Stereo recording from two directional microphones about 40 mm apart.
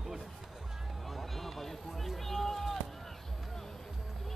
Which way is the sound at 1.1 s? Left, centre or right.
Centre.